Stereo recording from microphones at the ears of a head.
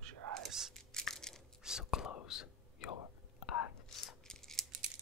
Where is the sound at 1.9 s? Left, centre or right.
Left.